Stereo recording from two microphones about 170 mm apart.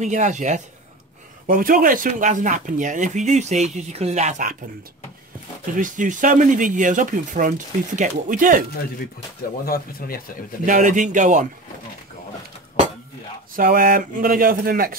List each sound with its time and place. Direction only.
0.0 s speech: 45° right (ahead or behind)
5.8 s speech: 50° right (ahead or behind)
9.7 s speech: 60° left (ahead or behind)
10.6 s speech: 50° right (ahead or behind)
13.6 s speech: 55° right (ahead or behind)